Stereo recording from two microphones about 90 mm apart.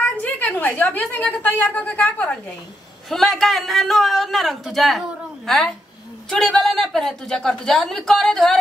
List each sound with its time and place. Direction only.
0.2 s a sound: 20° left (ahead or behind)
1.1 s a woman's voice: 20° left (ahead or behind)
3.1 s speech: 5° left (ahead or behind)